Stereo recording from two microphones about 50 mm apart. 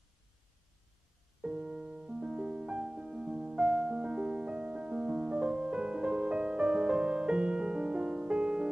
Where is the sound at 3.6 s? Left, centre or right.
Centre.